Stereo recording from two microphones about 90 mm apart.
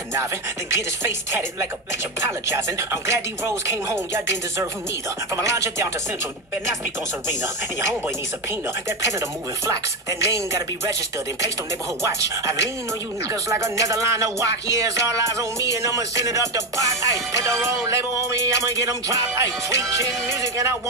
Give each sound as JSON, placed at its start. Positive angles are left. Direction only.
{"t": 0.1, "sound": "music", "side_deg": -30}
{"t": 2.2, "sound": "music", "side_deg": -30}
{"t": 9.7, "sound": "music", "side_deg": -40}
{"t": 12.0, "sound": "music", "side_deg": -35}